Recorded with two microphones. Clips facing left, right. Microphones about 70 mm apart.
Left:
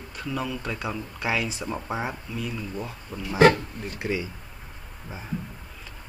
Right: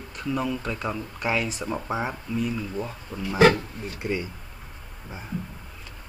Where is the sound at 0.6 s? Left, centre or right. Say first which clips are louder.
Right 1 dB; centre.